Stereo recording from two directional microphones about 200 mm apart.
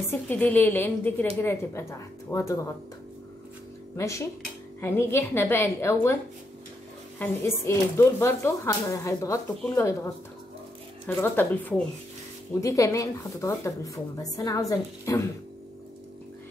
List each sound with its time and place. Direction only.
0.3 s speech: 10° left (ahead or behind)
3.9 s speech: 15° left (ahead or behind)
7.2 s speech: 10° left (ahead or behind)
11.1 s speech: 10° left (ahead or behind)